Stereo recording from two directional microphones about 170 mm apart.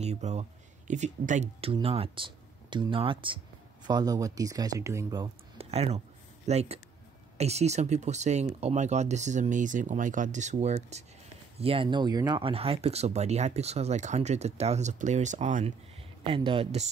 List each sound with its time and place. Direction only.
0.0 s speech: 40° right (ahead or behind); by 5.3 s 20° right (ahead or behind)
5.6 s a sound: 40° right (ahead or behind)
7.3 s speech: 40° right (ahead or behind)